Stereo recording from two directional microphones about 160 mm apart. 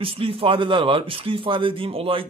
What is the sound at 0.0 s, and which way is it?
Speech, 35° right (ahead or behind).